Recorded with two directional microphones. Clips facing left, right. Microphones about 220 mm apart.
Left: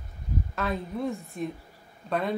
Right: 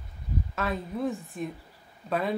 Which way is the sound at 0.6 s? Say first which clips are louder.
Even; centre (ahead or behind).